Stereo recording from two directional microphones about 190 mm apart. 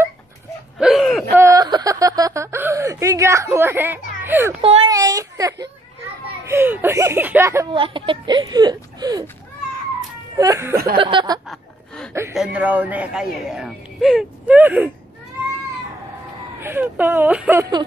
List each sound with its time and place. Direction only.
0.7 s a sound: centre (ahead or behind)
1.4 s chuckle: 20° right (ahead or behind)
4.2 s a child's voice: 10° right (ahead or behind)
4.6 s speech: 30° right (ahead or behind)
4.9 s speech: 20° right (ahead or behind)
7.7 s speech: 25° right (ahead or behind)
10.3 s speech: 20° right (ahead or behind)
11.0 s speech: 25° right (ahead or behind)
12.1 s a sound: 15° right (ahead or behind)
12.5 s speech: 10° right (ahead or behind)
16.5 s speech: 10° right (ahead or behind)